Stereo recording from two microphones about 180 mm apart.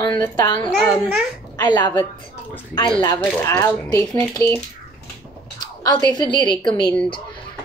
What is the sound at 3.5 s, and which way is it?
Speech, 20° left (ahead or behind).